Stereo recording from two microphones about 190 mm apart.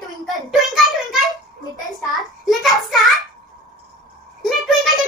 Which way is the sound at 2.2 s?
Centre (ahead or behind).